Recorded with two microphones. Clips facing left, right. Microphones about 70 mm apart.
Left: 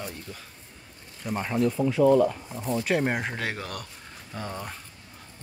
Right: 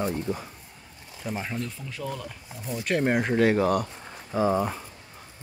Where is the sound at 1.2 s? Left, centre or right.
Centre.